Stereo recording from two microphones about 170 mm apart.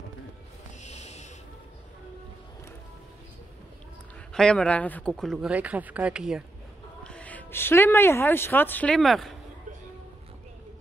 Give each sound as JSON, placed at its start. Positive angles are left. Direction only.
{"t": 0.8, "sound": "a sound", "side_deg": 40}
{"t": 4.3, "sound": "speech", "side_deg": 5}
{"t": 5.5, "sound": "speech", "side_deg": -10}
{"t": 7.0, "sound": "speech", "side_deg": 5}